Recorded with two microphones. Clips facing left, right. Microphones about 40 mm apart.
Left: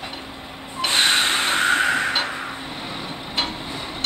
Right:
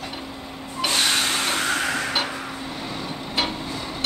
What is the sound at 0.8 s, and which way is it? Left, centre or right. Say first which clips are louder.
Snort: left 3 dB; left.